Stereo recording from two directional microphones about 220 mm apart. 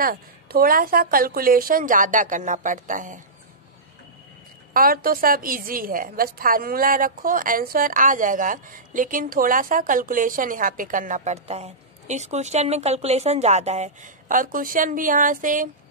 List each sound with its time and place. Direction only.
0.0 s a woman's voice: 40° right (ahead or behind)
4.7 s a woman's voice: 40° right (ahead or behind)